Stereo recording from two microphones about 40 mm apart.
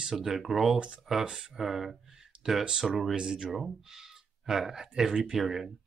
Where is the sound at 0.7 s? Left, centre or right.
Right.